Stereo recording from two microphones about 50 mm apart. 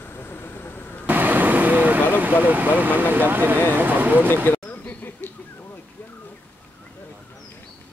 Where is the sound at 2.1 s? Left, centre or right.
Right.